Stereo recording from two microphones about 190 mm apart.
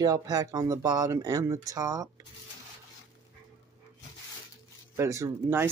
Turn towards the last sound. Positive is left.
turn(degrees=-15)  # may be behind; listen again after turning